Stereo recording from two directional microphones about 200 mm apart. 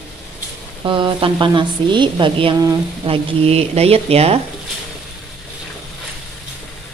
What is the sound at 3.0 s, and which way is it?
Speech, 30° right (ahead or behind).